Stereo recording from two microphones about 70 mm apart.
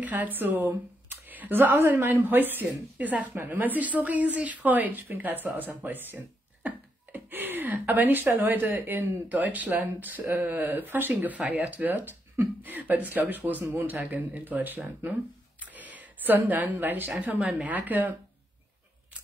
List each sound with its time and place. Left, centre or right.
0.0 s speech: right
15.6 s a sound: right
16.8 s speech: right